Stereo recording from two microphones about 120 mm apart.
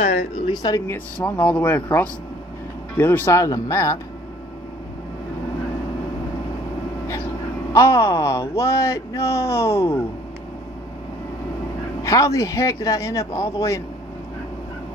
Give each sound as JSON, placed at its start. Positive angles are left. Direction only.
{"t": 0.5, "sound": "speech", "side_deg": 35}
{"t": 0.8, "sound": "speech", "side_deg": 15}
{"t": 7.7, "sound": "speech", "side_deg": 25}
{"t": 12.0, "sound": "speech", "side_deg": 25}